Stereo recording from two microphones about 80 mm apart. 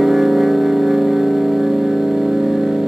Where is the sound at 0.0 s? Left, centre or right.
Centre.